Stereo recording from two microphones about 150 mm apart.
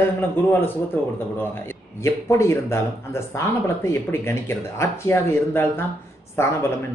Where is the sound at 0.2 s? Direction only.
15° left (ahead or behind).